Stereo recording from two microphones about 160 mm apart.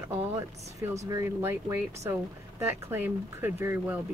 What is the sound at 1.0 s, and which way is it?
Speech, 20° right (ahead or behind).